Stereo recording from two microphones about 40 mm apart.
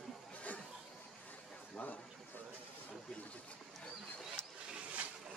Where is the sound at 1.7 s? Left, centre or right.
Left.